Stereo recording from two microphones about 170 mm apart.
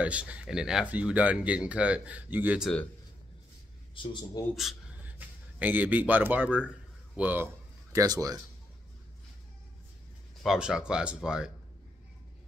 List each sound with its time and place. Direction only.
0.0 s speech: 10° right (ahead or behind)
3.9 s a man's voice: 30° left (ahead or behind)
4.6 s a sound: centre (ahead or behind)
5.6 s speech: 10° right (ahead or behind)
10.4 s speech: 5° right (ahead or behind)